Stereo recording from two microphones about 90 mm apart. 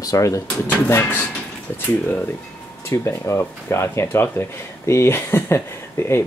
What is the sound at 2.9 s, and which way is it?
Speech, 30° left (ahead or behind).